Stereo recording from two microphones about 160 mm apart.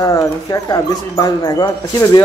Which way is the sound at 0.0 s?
20° left (ahead or behind).